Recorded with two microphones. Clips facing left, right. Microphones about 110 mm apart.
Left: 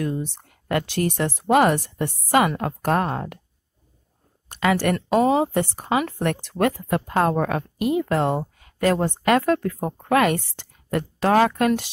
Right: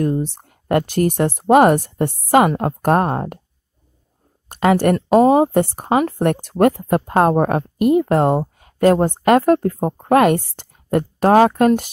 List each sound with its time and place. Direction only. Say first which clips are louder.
0.0 s speech: right 7 dB; 45° right (ahead or behind)
4.5 s speech: right 6 dB; 45° right (ahead or behind)
10.0 s speech: right 6 dB; 50° right (ahead or behind)